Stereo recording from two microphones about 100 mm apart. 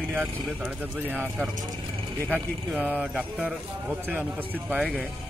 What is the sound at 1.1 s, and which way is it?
A man's voice, 20° right (ahead or behind).